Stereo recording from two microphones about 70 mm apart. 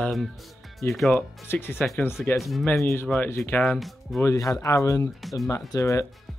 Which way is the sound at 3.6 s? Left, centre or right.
Centre.